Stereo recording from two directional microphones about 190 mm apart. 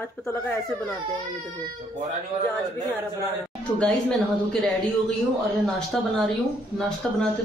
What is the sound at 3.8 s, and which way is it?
Speech, 5° left (ahead or behind).